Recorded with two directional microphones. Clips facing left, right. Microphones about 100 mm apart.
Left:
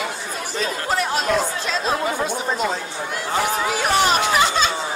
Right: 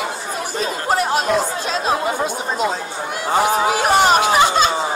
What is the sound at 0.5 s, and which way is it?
Chatter, 40° right (ahead or behind).